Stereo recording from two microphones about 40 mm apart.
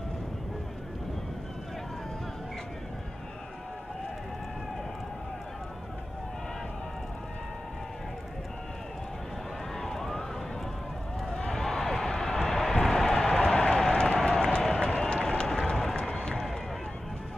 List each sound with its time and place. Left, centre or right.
9.8 s vehicle: centre
11.5 s a sound: centre
13.9 s applause: left
14.9 s run: left
15.7 s run: centre
16.0 s run: left